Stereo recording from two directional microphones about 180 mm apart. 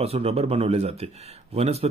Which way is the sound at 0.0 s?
35° right (ahead or behind).